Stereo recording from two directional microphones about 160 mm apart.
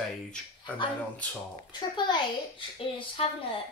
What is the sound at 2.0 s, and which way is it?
Speech, 30° left (ahead or behind).